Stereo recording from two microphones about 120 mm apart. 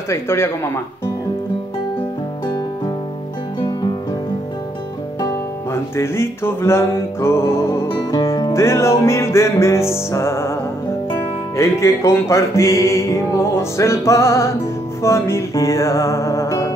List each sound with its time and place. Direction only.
0.1 s music: 20° left (ahead or behind)
3.5 s music: 45° left (ahead or behind)
5.2 s music: 25° left (ahead or behind)
7.9 s music: 40° left (ahead or behind)
8.5 s music: 25° left (ahead or behind)